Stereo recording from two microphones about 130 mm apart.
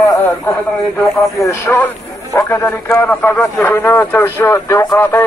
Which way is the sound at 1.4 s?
25° left (ahead or behind).